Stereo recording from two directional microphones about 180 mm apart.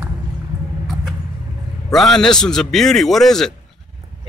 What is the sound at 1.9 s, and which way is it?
A man's voice, centre (ahead or behind).